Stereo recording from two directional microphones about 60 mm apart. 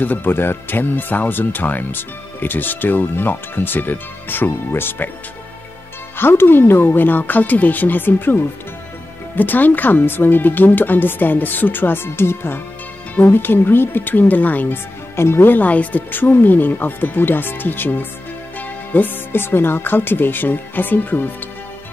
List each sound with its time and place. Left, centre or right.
0.0 s speech: left
6.1 s speech: left
15.1 s speech: left